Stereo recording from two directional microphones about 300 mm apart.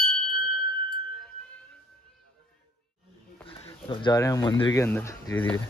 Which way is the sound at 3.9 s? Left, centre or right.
Centre.